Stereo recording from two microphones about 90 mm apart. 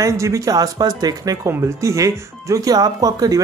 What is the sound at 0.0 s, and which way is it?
A man's voice, 35° right (ahead or behind).